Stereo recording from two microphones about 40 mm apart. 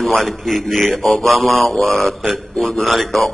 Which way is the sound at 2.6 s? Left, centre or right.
Centre.